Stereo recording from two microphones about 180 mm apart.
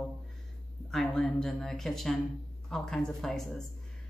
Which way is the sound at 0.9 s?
5° left (ahead or behind).